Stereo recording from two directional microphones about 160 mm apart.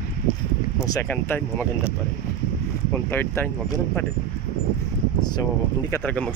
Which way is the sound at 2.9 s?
15° left (ahead or behind).